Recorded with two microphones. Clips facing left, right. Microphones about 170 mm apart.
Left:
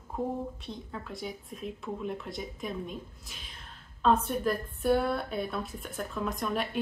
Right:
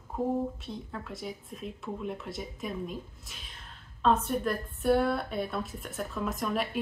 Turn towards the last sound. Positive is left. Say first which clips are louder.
# right 1 dB
turn(degrees=0)  # may be behind; listen again after turning